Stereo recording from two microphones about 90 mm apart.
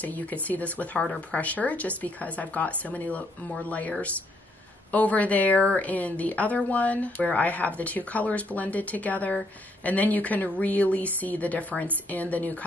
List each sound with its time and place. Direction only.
0.0 s a woman's voice: 15° left (ahead or behind)